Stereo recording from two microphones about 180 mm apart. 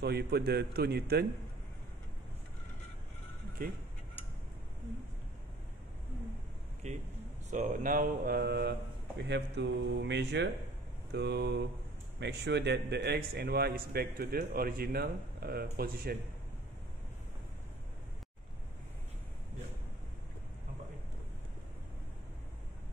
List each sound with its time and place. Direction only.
0.0 s a man's voice: 65° right (ahead or behind)
3.6 s speech: 55° right (ahead or behind)
6.8 s a man's voice: 40° right (ahead or behind); by 16.2 s 60° right (ahead or behind)